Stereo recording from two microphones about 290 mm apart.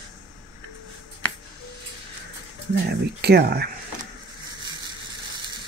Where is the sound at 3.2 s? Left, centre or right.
Right.